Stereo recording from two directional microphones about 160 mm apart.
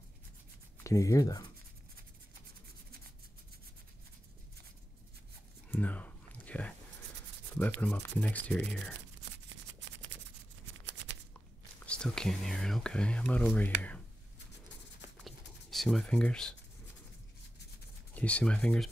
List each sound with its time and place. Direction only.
0.8 s speech: 20° left (ahead or behind)
5.7 s a sound: 10° left (ahead or behind)
7.5 s speech: 10° left (ahead or behind)
11.8 s speech: 5° left (ahead or behind)
15.1 s a sound: centre (ahead or behind)
18.1 s speech: 10° left (ahead or behind)